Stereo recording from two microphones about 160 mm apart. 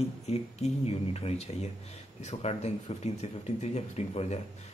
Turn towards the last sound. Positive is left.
turn(degrees=45)  # may be behind; listen again after turning